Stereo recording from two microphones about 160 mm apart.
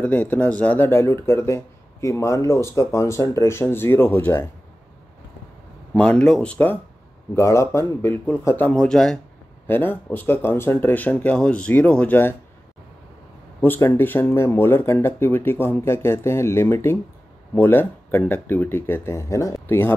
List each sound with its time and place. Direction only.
0.0 s speech: 10° left (ahead or behind)
5.9 s speech: 5° left (ahead or behind)
13.6 s speech: 15° left (ahead or behind)